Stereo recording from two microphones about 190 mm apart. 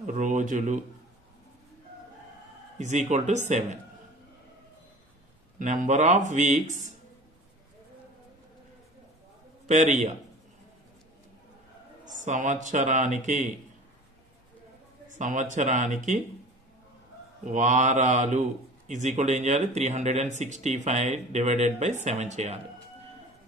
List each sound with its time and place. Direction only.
0.0 s speech: 40° right (ahead or behind)
2.8 s speech: 40° right (ahead or behind)
5.6 s speech: 40° right (ahead or behind)
9.7 s speech: 40° right (ahead or behind)
12.0 s speech: 40° right (ahead or behind)
15.1 s speech: 40° right (ahead or behind)
17.5 s speech: 40° right (ahead or behind)